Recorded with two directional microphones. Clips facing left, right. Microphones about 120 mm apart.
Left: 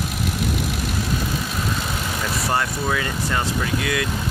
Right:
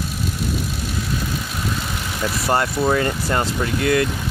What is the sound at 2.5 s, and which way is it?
Speech, 35° right (ahead or behind).